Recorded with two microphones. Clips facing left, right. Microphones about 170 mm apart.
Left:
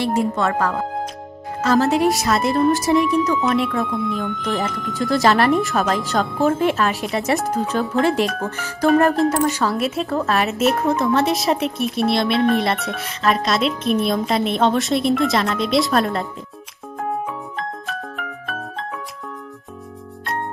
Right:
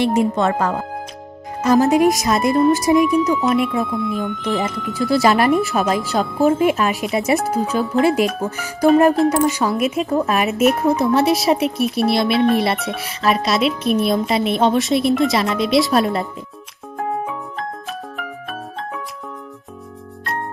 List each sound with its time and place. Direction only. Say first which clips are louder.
0.0 s speech: right 3 dB; 20° right (ahead or behind)
3.2 s speech: right 2 dB; centre (ahead or behind)
3.5 s speech: right 2 dB; 15° right (ahead or behind)
4.2 s speech: right 2 dB; centre (ahead or behind)
17.3 s music: right 1 dB; centre (ahead or behind)